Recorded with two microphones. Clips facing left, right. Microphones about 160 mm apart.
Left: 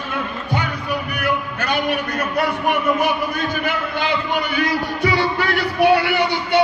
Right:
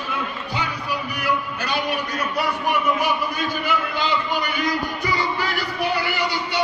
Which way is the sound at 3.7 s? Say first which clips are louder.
Left 1 dB; 60° left (ahead or behind).